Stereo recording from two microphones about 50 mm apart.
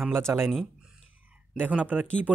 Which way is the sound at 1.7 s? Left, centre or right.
Right.